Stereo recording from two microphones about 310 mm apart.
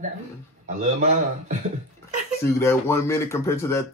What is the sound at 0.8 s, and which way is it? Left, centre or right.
Speech, right.